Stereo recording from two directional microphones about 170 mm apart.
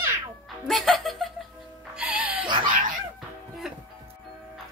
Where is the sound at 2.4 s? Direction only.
30° right (ahead or behind).